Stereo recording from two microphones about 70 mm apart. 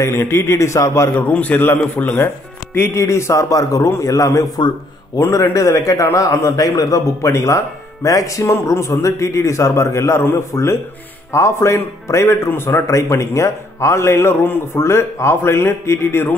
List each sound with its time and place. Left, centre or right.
0.0 s speech: left
1.1 s speech: left
4.6 s a man's voice: left
5.2 s speech: left
7.2 s speech: left